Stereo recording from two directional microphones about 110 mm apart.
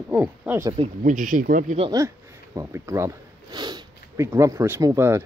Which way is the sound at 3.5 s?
40° right (ahead or behind).